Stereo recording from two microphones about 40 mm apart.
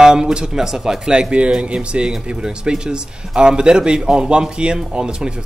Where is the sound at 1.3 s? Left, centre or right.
Right.